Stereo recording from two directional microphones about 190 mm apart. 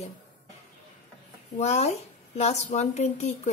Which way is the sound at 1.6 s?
35° left (ahead or behind).